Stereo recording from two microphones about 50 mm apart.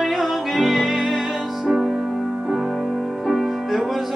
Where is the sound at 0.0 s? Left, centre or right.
Centre.